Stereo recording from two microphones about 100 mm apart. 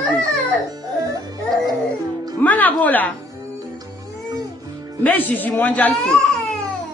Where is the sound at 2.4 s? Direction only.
15° left (ahead or behind).